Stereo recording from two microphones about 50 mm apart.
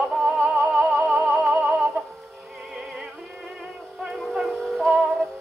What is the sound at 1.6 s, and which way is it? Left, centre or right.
Music, centre.